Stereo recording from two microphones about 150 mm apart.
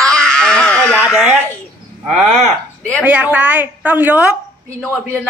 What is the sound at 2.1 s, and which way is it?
Speech, 50° right (ahead or behind).